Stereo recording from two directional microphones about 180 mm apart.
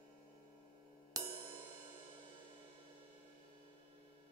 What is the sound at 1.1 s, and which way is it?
Music, 20° right (ahead or behind).